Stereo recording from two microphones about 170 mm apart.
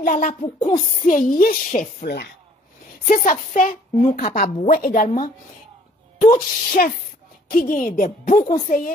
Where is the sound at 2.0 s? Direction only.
65° left (ahead or behind).